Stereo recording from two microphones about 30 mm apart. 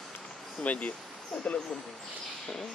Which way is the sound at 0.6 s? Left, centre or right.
Left.